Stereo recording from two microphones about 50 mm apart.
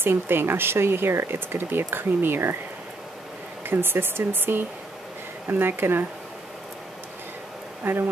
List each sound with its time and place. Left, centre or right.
0.0 s speech: right
3.6 s speech: right
7.8 s speech: right